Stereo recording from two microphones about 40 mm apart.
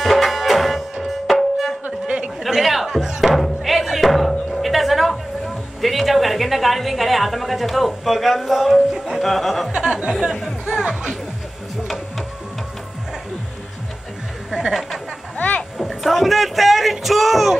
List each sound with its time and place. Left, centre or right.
0.0 s music: centre
2.0 s chatter: right
2.5 s chatter: centre
3.3 s music: centre
5.8 s a woman's voice: centre
8.9 s music: centre
9.2 s speech: centre
9.7 s speech: right
14.5 s speech: centre
15.3 s a sound: left
15.8 s a sound: centre